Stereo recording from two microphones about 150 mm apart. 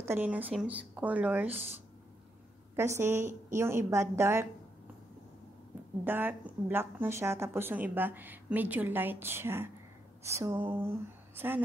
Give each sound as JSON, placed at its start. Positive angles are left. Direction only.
{"t": 0.0, "sound": "a woman's voice", "side_deg": -15}
{"t": 2.7, "sound": "a woman's voice", "side_deg": -15}
{"t": 6.0, "sound": "a woman's voice", "side_deg": -15}